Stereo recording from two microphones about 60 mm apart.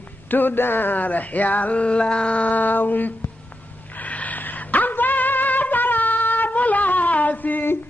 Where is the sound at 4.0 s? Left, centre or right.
Left.